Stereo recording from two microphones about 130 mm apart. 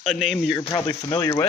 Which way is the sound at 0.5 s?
30° left (ahead or behind).